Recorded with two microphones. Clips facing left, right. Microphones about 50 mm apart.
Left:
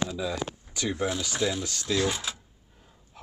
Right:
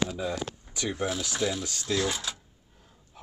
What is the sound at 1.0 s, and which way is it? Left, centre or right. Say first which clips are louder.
Speech: left 1 dB; centre.